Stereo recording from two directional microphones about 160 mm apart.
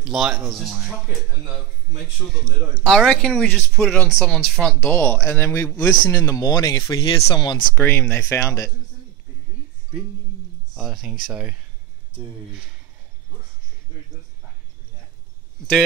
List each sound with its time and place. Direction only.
0.0 s speech: centre (ahead or behind)
2.3 s speech: 5° left (ahead or behind); by 7.6 s 30° left (ahead or behind)
7.7 s speech: 15° left (ahead or behind)
10.8 s speech: centre (ahead or behind)